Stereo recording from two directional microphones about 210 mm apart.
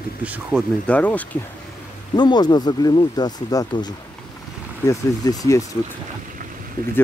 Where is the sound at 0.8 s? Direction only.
5° left (ahead or behind).